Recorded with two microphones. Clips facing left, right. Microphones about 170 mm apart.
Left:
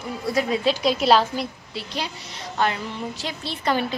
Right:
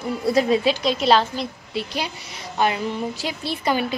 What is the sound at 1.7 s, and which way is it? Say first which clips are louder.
A woman's voice: right 4 dB; 15° right (ahead or behind).